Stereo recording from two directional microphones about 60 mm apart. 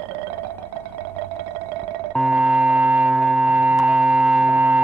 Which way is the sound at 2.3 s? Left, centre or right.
Centre.